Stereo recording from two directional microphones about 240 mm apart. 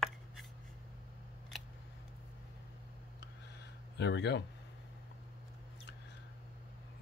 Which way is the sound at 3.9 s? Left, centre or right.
Left.